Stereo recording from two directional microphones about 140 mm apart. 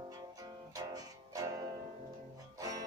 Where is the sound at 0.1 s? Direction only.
25° right (ahead or behind).